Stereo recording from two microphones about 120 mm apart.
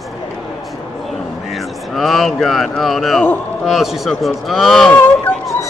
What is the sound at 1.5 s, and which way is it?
Speech, centre (ahead or behind).